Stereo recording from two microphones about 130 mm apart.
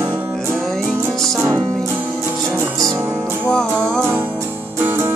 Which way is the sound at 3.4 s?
5° left (ahead or behind).